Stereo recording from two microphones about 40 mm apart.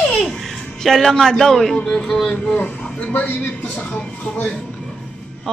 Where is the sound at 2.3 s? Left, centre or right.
Left.